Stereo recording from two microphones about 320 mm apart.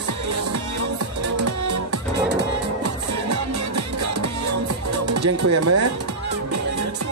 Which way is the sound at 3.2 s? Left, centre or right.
Right.